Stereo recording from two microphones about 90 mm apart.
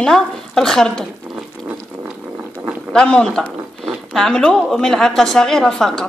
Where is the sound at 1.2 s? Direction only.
15° right (ahead or behind).